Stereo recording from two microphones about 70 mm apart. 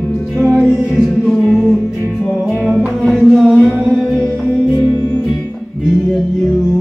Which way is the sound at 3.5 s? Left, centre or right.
Centre.